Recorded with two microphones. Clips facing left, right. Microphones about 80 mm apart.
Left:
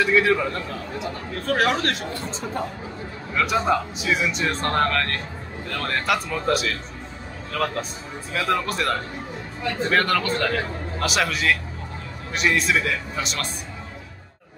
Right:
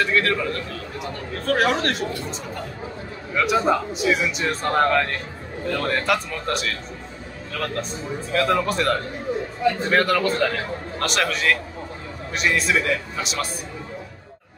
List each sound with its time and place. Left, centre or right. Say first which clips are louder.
0.0 s a man's voice: left 2 dB; centre
1.4 s speech: right 1 dB; centre
3.3 s a man's voice: right 1 dB; centre